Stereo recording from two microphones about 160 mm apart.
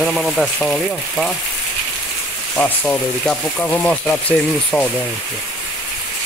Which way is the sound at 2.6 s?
10° left (ahead or behind).